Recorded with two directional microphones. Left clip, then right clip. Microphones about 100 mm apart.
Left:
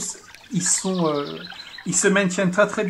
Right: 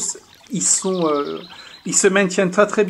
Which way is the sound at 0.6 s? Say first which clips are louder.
Right 4 dB; 65° right (ahead or behind).